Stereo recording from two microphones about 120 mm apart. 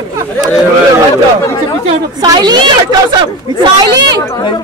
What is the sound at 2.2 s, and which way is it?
Speech, 35° right (ahead or behind).